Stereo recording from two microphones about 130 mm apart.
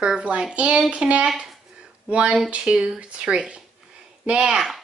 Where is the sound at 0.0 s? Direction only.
10° right (ahead or behind).